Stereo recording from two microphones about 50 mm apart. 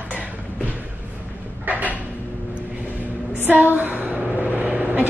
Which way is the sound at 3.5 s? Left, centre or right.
Right.